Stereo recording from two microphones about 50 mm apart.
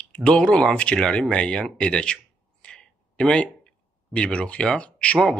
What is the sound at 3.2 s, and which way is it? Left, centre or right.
Speech, centre.